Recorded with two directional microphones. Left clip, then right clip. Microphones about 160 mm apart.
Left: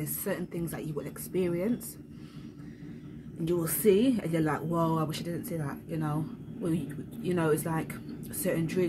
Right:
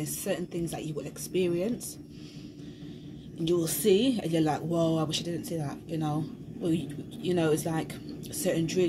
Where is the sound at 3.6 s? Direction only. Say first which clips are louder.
Left 2 dB; 15° right (ahead or behind).